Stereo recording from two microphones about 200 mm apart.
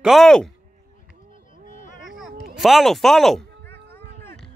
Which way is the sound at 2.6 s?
Centre (ahead or behind).